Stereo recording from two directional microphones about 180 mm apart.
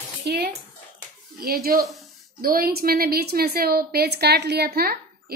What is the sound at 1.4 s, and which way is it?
A woman's voice, 55° right (ahead or behind).